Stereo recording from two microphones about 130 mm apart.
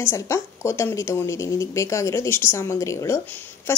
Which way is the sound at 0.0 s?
25° left (ahead or behind).